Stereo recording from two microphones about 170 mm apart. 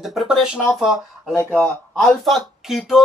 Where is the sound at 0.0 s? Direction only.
Centre (ahead or behind).